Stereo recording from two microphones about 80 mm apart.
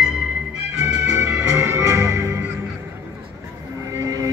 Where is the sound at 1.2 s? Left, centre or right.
Right.